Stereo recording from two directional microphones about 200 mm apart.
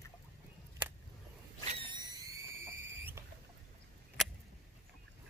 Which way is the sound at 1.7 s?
25° right (ahead or behind).